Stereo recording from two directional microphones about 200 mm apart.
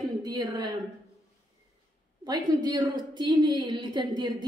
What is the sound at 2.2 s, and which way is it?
A woman's voice, 20° right (ahead or behind).